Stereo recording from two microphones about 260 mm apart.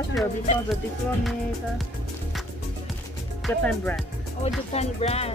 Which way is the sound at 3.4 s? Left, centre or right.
Centre.